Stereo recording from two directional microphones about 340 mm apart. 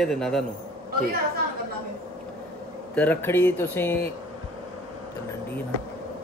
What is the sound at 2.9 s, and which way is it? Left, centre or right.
Speech, centre.